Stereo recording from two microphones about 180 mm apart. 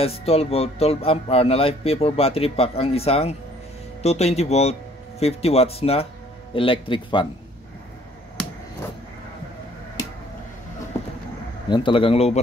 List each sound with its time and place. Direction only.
0.0 s speech: 35° left (ahead or behind)
11.7 s speech: 25° left (ahead or behind)